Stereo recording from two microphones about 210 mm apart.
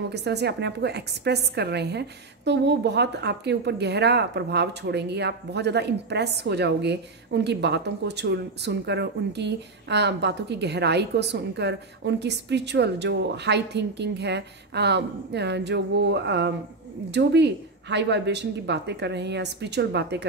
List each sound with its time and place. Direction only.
0.1 s speech: 55° right (ahead or behind)